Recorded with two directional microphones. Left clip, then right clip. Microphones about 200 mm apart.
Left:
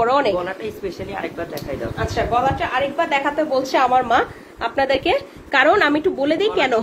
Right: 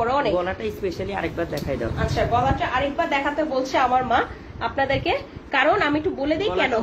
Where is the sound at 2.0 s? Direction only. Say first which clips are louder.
Left 3 dB; 60° left (ahead or behind).